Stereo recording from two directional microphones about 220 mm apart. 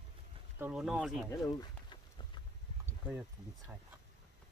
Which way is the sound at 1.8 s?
20° left (ahead or behind).